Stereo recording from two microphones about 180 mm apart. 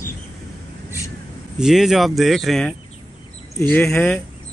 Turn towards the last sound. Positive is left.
turn(degrees=5)  # may be behind; listen again after turning